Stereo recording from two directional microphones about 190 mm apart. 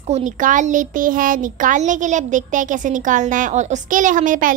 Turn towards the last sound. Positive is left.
turn(degrees=-45)  # may be behind; listen again after turning